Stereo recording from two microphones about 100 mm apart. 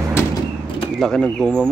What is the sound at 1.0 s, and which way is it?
Speech, 5° left (ahead or behind).